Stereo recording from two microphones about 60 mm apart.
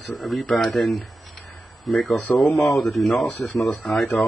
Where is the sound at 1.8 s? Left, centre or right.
Centre.